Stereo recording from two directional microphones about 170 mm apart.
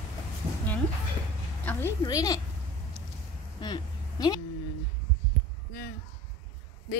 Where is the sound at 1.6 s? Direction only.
10° left (ahead or behind).